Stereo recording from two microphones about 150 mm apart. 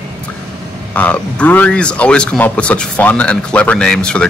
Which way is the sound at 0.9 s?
10° left (ahead or behind).